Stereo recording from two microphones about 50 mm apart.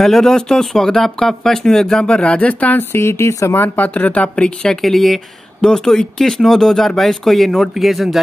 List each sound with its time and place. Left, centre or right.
0.0 s speech: centre; by 2.8 s left
2.8 s speech: left
3.5 s speech: left
4.8 s speech: centre